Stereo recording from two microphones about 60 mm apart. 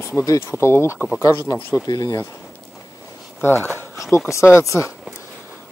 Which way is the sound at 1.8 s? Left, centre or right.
Left.